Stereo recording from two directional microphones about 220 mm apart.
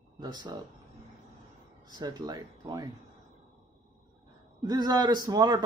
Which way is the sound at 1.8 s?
20° right (ahead or behind).